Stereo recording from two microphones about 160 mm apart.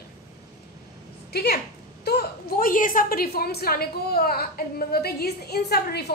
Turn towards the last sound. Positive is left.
turn(degrees=90)